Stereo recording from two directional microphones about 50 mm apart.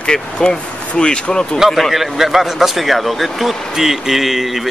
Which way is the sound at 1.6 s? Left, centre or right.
Centre.